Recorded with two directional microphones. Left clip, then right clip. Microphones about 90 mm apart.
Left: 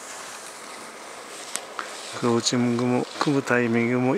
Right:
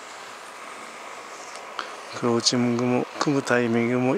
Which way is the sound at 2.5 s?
30° right (ahead or behind).